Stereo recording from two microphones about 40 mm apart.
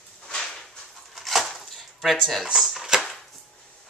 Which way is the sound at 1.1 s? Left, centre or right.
Centre.